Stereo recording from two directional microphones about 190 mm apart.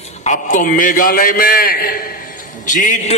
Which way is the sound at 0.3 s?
45° left (ahead or behind).